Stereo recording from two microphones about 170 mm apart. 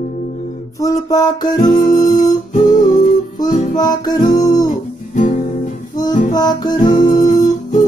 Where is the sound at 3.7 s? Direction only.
25° left (ahead or behind).